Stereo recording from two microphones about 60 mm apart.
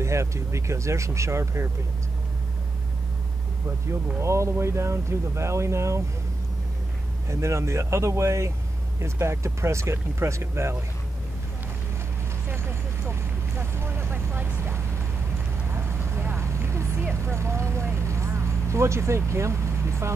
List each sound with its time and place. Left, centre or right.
0.0 s speech: right
4.2 s speech: right
7.2 s speech: right
12.4 s vehicle: right
16.3 s vehicle: right